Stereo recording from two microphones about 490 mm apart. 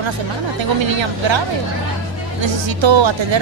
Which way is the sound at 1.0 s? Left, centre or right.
Right.